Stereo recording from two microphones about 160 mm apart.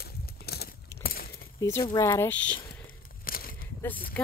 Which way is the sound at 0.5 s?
75° left (ahead or behind).